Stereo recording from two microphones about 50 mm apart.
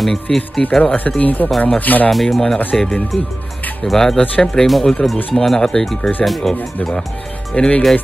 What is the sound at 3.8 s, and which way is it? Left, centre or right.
Speech, centre.